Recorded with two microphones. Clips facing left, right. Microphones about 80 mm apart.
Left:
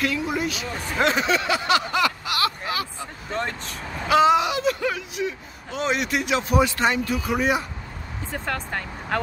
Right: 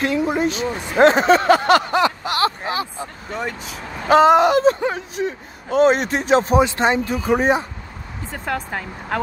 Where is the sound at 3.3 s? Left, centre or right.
Centre.